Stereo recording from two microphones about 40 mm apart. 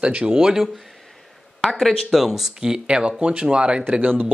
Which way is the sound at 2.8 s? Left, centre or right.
Right.